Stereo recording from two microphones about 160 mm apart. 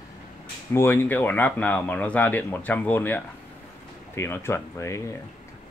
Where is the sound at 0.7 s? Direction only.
15° left (ahead or behind).